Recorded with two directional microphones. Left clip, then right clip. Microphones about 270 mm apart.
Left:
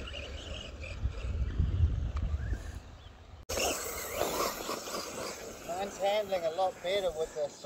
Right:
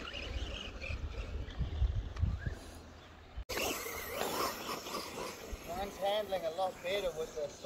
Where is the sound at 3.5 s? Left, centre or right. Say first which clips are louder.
Left 4 dB; centre.